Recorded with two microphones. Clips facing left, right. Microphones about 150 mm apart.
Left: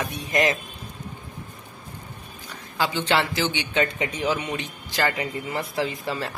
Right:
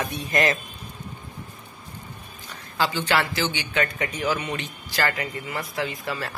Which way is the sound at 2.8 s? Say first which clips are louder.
Even; 20° left (ahead or behind).